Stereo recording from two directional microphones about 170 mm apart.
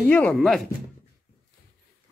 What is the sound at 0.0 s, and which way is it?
Speech, 10° left (ahead or behind).